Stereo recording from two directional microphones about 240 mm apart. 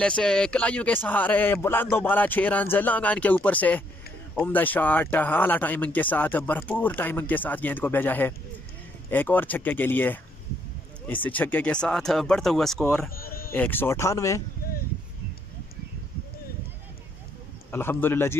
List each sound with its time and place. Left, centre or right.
0.0 s speech: centre
13.1 s a sound: left
13.5 s speech: centre
17.6 s speech: centre